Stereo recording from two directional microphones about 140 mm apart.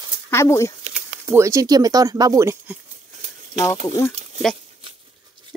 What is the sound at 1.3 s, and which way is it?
Speech, 20° right (ahead or behind).